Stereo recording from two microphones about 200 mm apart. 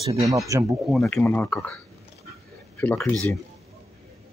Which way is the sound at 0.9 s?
Centre (ahead or behind).